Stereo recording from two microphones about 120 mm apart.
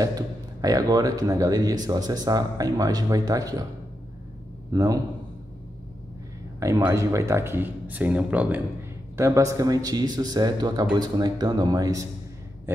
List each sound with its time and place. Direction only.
0.0 s speech: 30° right (ahead or behind)
4.7 s speech: 30° right (ahead or behind)
6.8 s speech: 25° right (ahead or behind)
9.1 s speech: 25° right (ahead or behind)
12.7 s speech: 20° right (ahead or behind)